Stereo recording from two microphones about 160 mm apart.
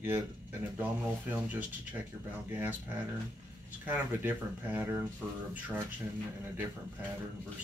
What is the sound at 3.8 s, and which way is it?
Speech, 10° right (ahead or behind).